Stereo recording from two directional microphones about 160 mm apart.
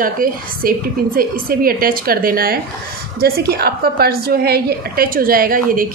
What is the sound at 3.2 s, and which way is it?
A woman's voice, 75° right (ahead or behind).